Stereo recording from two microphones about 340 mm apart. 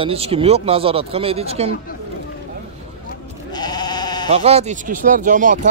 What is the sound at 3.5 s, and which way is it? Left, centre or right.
Sheep, centre.